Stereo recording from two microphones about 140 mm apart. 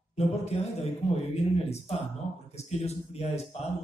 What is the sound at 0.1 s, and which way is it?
A man's voice, 50° left (ahead or behind).